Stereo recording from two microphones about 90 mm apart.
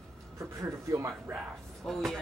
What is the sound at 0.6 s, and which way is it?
Speech, 35° right (ahead or behind).